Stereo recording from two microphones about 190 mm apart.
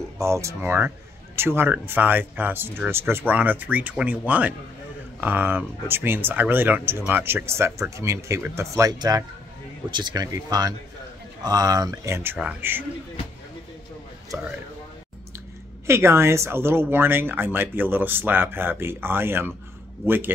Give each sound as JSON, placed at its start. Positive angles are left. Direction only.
{"t": 0.2, "sound": "speech", "side_deg": -15}
{"t": 15.9, "sound": "speech", "side_deg": -15}